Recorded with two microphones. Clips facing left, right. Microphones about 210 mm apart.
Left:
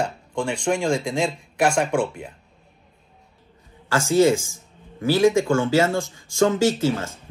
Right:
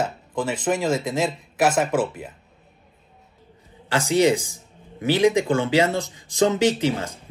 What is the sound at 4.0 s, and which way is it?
Speech, 15° right (ahead or behind).